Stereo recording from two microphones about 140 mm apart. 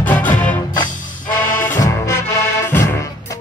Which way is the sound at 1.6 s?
20° left (ahead or behind).